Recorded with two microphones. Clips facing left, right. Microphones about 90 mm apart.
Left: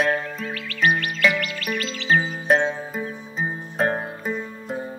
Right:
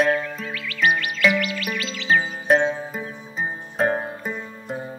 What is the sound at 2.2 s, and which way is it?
Music, centre (ahead or behind).